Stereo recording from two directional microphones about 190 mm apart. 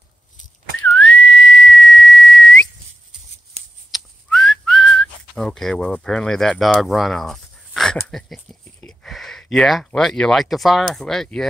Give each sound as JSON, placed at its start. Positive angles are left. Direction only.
{"t": 0.9, "sound": "whistling", "side_deg": 5}
{"t": 1.2, "sound": "whistling", "side_deg": 75}
{"t": 1.5, "sound": "whistle", "side_deg": 0}
{"t": 1.8, "sound": "whistle", "side_deg": 75}
{"t": 2.2, "sound": "whistle", "side_deg": 5}
{"t": 3.6, "sound": "shuffling cards", "side_deg": -35}
{"t": 3.9, "sound": "whistling", "side_deg": 5}
{"t": 8.8, "sound": "speech", "side_deg": 0}